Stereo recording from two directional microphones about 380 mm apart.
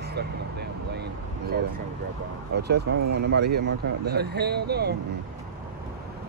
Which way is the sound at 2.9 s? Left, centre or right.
Right.